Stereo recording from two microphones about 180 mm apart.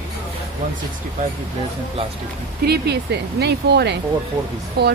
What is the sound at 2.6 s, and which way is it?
Speech, 65° right (ahead or behind).